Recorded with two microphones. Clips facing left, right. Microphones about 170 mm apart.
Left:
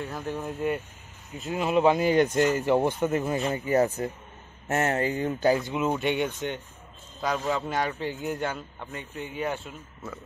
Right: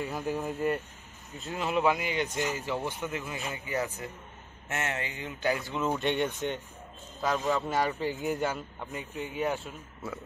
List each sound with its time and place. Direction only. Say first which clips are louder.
0.0 s speech: even; centre (ahead or behind)
1.3 s speech: left 5 dB; 15° left (ahead or behind)
2.0 s speech: left 10 dB; 40° left (ahead or behind)
2.3 s speech: left 9 dB; 60° left (ahead or behind)
3.0 s speech: left 10 dB; 45° left (ahead or behind)
5.6 s speech: left 4 dB; 20° left (ahead or behind)
5.9 s speech: left 2 dB; 5° left (ahead or behind)